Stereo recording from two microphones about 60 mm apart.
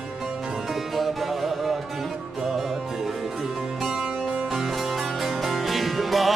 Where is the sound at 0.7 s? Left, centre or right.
Centre.